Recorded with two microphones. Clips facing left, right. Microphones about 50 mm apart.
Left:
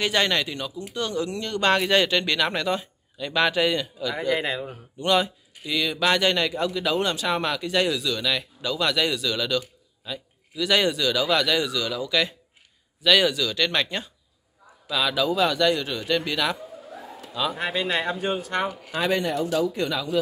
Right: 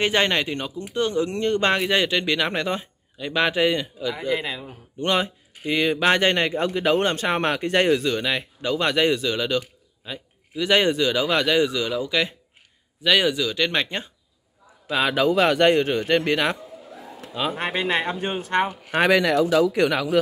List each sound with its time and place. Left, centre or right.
0.0 s speech: right
1.7 s speech: centre
4.1 s speech: centre
5.0 s speech: right
19.0 s speech: right